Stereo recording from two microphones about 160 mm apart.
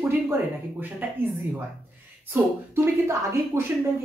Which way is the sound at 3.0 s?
15° right (ahead or behind).